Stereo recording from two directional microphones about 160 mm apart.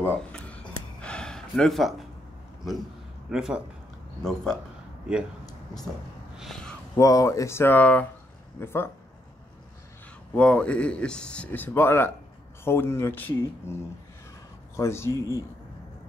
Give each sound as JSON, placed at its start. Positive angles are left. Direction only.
{"t": 0.0, "sound": "gasp", "side_deg": 10}
{"t": 3.3, "sound": "a man's voice", "side_deg": -5}
{"t": 6.3, "sound": "a sound", "side_deg": 0}
{"t": 7.0, "sound": "speech", "side_deg": 20}
{"t": 10.3, "sound": "speech", "side_deg": 5}
{"t": 14.8, "sound": "speech", "side_deg": 15}